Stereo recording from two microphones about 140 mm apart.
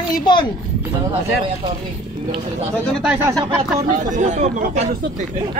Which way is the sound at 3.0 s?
10° right (ahead or behind).